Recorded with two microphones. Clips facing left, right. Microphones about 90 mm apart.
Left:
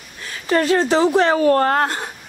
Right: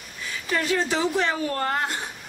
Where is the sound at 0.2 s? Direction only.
55° left (ahead or behind).